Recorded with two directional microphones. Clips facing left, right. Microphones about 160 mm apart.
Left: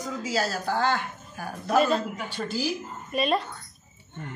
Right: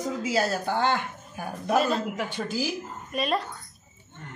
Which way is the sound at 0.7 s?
20° right (ahead or behind).